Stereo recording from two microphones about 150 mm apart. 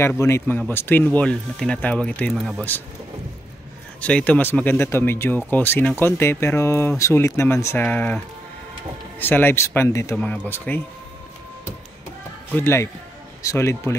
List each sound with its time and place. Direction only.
0.2 s speech: 15° left (ahead or behind)
4.0 s speech: 10° left (ahead or behind)
9.2 s speech: 15° left (ahead or behind)
10.1 s speech: 10° left (ahead or behind)
12.5 s a man's voice: 15° left (ahead or behind)